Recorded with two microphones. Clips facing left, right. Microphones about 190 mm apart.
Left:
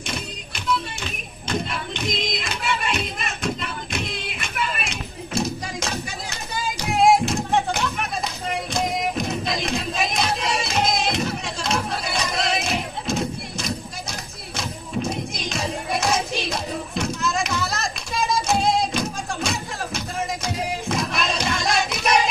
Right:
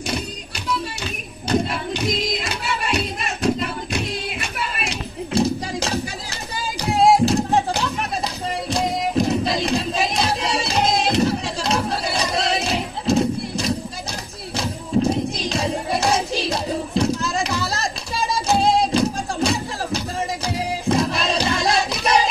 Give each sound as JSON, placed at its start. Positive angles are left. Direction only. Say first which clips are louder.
{"t": 1.5, "sound": "a sound", "louder": "right 6 dB", "side_deg": -35}
{"t": 6.9, "sound": "music", "louder": "right 2 dB", "side_deg": -35}
{"t": 8.7, "sound": "crowd", "louder": "right 4 dB", "side_deg": -35}
{"t": 14.6, "sound": "music", "louder": "right 7 dB", "side_deg": -35}